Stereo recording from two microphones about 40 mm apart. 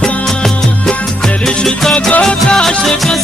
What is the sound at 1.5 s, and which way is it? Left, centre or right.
Music, centre.